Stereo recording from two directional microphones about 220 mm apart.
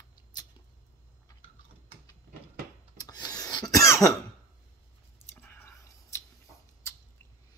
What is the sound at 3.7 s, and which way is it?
Cough, 15° left (ahead or behind).